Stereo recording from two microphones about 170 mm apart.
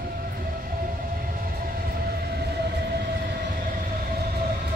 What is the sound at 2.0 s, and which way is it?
Train, 65° right (ahead or behind).